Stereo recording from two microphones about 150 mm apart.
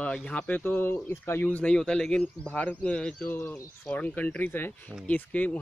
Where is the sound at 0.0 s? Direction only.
10° left (ahead or behind).